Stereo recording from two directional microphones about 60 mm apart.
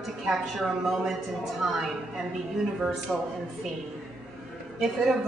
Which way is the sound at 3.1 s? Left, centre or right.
Centre.